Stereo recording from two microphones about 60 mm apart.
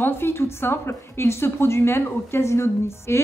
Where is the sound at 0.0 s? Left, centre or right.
Left.